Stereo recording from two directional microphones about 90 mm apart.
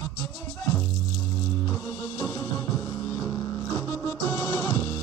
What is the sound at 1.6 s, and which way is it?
Music, 25° left (ahead or behind).